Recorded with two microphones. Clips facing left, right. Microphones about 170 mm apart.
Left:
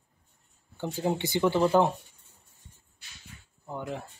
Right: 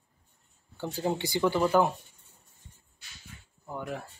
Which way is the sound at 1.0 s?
20° left (ahead or behind).